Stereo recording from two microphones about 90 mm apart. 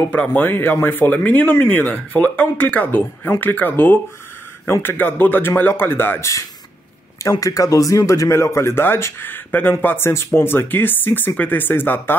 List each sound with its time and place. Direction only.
0.1 s speech: 20° left (ahead or behind)
7.2 s speech: 40° left (ahead or behind)